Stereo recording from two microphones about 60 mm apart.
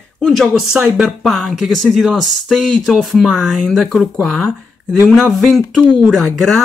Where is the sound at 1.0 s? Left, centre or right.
Centre.